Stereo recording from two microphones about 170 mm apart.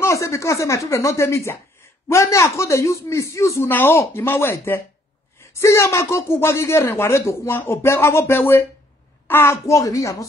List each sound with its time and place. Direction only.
0.0 s speech: 15° left (ahead or behind)